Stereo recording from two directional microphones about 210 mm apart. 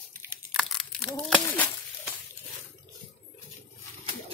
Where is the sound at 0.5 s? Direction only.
Centre (ahead or behind).